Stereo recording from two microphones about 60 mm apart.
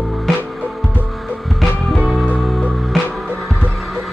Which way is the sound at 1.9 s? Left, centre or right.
Centre.